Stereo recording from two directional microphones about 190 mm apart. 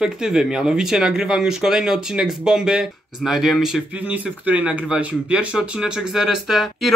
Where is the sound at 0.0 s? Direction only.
5° right (ahead or behind).